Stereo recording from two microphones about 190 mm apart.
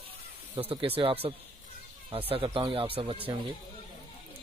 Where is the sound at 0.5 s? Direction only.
30° right (ahead or behind).